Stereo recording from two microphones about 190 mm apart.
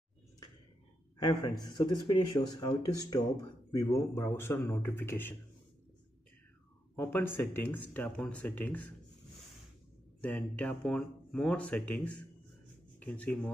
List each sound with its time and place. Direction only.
1.1 s a man's voice: 20° left (ahead or behind)
7.0 s speech: 10° left (ahead or behind)
10.2 s speech: 5° left (ahead or behind)